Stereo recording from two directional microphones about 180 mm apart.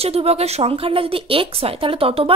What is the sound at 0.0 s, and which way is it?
Speech, 35° right (ahead or behind).